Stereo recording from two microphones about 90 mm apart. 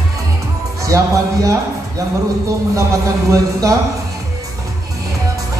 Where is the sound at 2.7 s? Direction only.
35° right (ahead or behind).